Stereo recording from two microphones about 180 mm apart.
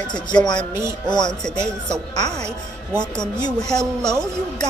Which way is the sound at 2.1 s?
35° right (ahead or behind).